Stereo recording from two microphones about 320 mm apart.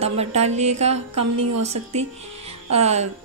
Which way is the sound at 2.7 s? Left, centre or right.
Centre.